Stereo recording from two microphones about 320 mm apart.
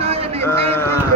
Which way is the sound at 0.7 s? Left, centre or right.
Centre.